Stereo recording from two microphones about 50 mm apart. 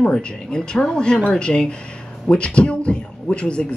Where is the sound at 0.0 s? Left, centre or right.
Centre.